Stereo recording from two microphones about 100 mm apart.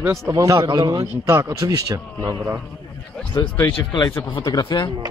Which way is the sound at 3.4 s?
35° left (ahead or behind).